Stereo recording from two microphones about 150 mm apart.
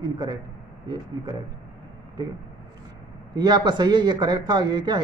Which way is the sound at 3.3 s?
30° right (ahead or behind).